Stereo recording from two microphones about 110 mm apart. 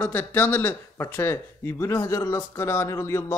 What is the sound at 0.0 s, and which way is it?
Speech, 15° left (ahead or behind).